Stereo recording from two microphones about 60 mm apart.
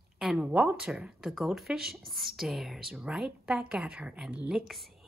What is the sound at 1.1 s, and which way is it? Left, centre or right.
A woman's voice, centre.